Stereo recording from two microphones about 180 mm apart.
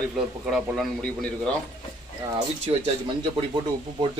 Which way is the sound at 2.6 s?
35° right (ahead or behind).